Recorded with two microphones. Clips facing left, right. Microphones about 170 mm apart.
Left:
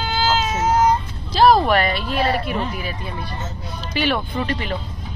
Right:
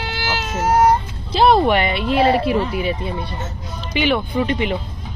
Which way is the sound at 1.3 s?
25° right (ahead or behind).